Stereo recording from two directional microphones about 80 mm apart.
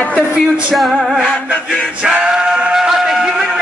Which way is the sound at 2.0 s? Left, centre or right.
Centre.